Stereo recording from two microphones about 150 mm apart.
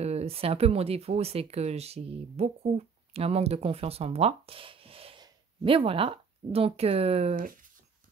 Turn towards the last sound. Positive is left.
turn(degrees=-45)  # may be behind; listen again after turning